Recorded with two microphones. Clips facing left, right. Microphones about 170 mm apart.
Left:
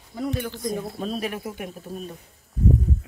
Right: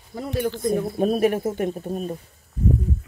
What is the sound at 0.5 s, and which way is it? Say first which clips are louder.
Speech: right 6 dB; 55° right (ahead or behind).